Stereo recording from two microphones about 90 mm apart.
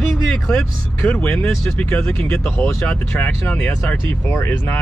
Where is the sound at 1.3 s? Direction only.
10° left (ahead or behind).